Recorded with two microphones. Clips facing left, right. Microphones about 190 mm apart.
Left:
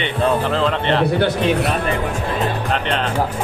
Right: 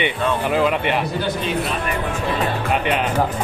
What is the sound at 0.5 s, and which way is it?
Speech, 10° right (ahead or behind).